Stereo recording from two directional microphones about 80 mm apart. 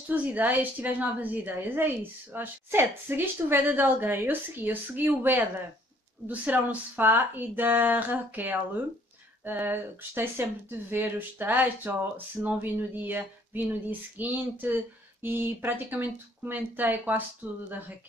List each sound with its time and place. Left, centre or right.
0.1 s a woman's voice: centre